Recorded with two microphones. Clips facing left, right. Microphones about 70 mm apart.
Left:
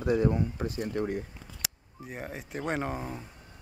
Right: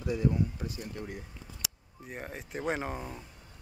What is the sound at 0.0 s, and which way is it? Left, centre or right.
Speech, left.